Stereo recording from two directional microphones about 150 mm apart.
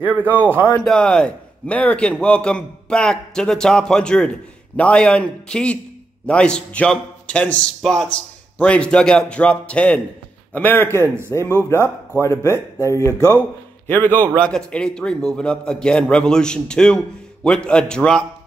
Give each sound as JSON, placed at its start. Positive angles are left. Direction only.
{"t": 0.3, "sound": "a man's voice", "side_deg": -15}
{"t": 0.8, "sound": "a man's voice", "side_deg": 5}
{"t": 11.0, "sound": "a man's voice", "side_deg": -15}
{"t": 12.2, "sound": "a man's voice", "side_deg": 20}